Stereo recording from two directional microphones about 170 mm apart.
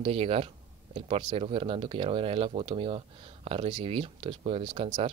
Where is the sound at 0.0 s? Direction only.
35° right (ahead or behind).